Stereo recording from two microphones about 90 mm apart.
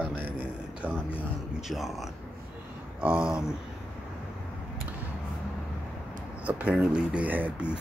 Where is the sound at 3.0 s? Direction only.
15° right (ahead or behind).